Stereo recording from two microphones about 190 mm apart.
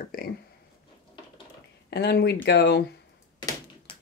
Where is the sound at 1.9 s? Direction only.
60° left (ahead or behind).